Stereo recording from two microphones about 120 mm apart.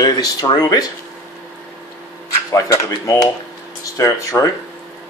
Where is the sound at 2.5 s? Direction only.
30° left (ahead or behind).